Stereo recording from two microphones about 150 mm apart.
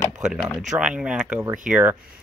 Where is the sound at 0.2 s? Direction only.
5° right (ahead or behind).